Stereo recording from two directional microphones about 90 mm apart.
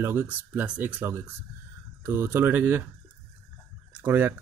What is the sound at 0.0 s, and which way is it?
Speech, 20° right (ahead or behind).